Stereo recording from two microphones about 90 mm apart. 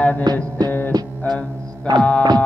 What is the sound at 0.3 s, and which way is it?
Music, 50° right (ahead or behind).